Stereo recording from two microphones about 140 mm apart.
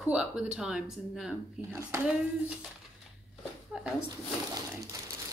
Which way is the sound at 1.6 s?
20° right (ahead or behind).